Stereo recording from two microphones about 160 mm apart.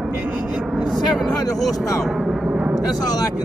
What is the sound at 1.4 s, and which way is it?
Speech, 20° left (ahead or behind).